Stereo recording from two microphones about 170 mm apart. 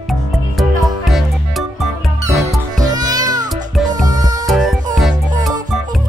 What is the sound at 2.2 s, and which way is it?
Music, 20° right (ahead or behind).